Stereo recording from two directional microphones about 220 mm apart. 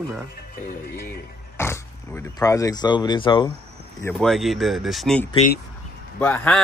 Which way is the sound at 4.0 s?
5° left (ahead or behind).